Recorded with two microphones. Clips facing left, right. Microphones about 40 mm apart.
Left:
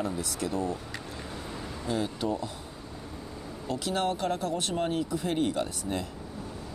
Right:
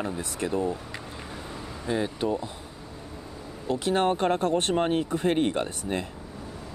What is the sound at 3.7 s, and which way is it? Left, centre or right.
Speech, right.